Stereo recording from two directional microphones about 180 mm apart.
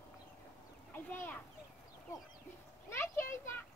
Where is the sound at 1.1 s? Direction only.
10° left (ahead or behind).